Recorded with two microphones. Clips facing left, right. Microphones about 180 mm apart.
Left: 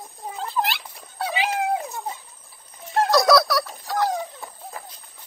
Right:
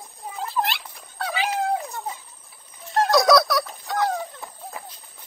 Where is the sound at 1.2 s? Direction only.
15° left (ahead or behind).